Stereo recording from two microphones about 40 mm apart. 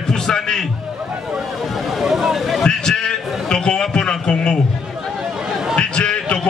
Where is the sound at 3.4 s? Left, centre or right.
Left.